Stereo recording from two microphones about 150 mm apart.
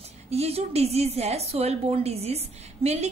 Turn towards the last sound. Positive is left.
turn(degrees=-45)  # may be behind; listen again after turning